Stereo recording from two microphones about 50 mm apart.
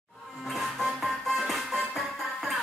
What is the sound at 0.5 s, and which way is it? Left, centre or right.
Music, centre.